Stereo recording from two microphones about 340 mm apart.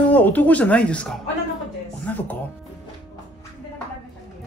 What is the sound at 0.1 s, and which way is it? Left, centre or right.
Speech, centre.